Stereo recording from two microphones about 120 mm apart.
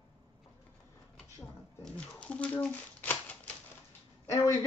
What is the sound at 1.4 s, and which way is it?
Shuffling cards, 10° left (ahead or behind).